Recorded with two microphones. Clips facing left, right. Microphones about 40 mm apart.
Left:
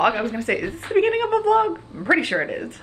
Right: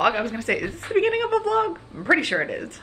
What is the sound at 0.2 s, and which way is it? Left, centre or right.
A woman's voice, centre.